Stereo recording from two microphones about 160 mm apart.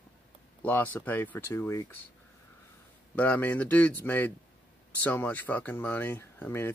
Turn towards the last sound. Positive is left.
turn(degrees=15)  # may be behind; listen again after turning